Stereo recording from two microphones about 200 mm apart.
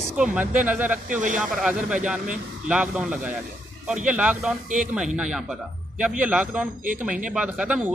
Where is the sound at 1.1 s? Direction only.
40° right (ahead or behind).